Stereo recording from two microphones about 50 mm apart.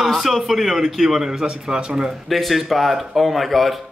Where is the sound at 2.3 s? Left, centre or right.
Centre.